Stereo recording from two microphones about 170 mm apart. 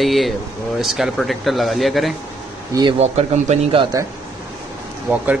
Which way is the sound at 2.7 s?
25° right (ahead or behind).